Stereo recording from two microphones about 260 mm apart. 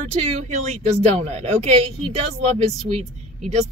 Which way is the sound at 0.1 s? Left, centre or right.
Right.